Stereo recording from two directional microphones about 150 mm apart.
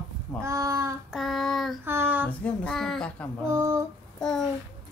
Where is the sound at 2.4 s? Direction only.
5° left (ahead or behind).